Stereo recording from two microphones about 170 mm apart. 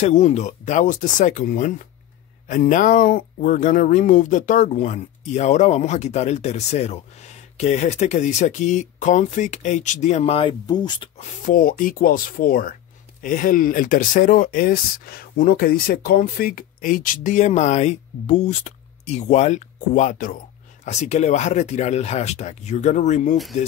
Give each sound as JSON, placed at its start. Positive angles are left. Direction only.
{"t": 0.0, "sound": "speech", "side_deg": 45}
{"t": 11.1, "sound": "speech", "side_deg": 55}
{"t": 23.3, "sound": "speech", "side_deg": 0}